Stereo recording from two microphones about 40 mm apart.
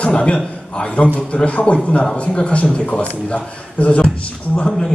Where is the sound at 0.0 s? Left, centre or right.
Left.